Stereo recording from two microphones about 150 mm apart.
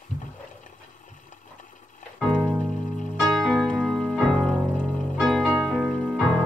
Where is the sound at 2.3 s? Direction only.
5° right (ahead or behind).